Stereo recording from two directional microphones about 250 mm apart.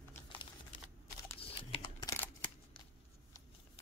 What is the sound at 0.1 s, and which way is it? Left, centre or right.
Typing, centre.